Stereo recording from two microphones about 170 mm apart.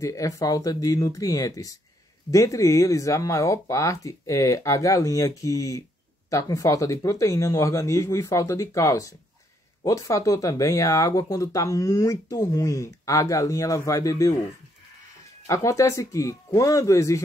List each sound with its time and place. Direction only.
0.0 s speech: 20° left (ahead or behind)
15.4 s speech: 20° left (ahead or behind)